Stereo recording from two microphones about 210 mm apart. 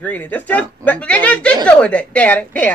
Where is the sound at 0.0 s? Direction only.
10° left (ahead or behind).